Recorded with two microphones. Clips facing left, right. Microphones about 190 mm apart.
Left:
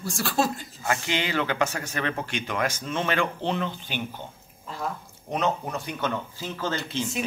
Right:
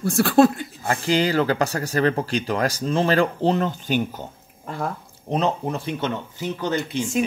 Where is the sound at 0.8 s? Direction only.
35° right (ahead or behind).